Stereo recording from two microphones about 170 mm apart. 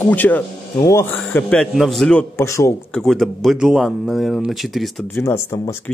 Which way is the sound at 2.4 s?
15° left (ahead or behind).